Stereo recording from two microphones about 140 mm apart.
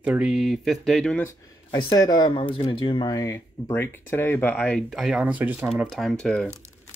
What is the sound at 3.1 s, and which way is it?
Speech, 20° left (ahead or behind).